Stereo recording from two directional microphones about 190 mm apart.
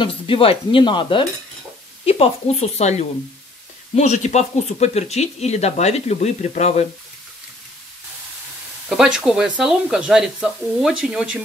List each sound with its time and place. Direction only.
0.0 s speech: 30° left (ahead or behind)
8.8 s speech: 5° right (ahead or behind)